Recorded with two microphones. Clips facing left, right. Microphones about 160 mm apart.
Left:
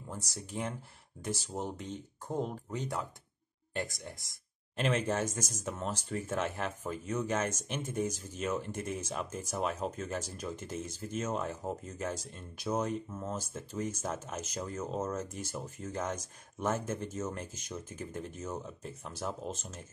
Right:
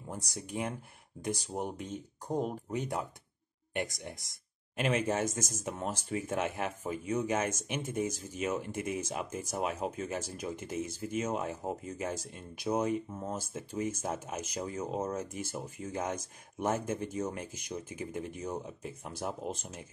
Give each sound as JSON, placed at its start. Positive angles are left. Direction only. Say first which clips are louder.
{"t": 0.3, "sound": "speech", "louder": "right 2 dB", "side_deg": -15}